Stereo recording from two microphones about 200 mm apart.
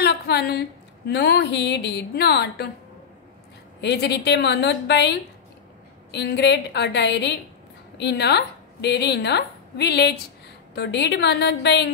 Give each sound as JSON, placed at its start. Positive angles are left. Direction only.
{"t": 0.0, "sound": "a woman's voice", "side_deg": 55}
{"t": 3.8, "sound": "a woman's voice", "side_deg": 55}